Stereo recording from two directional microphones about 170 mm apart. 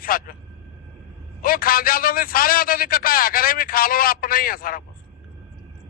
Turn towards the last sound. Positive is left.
turn(degrees=55)  # may be behind; listen again after turning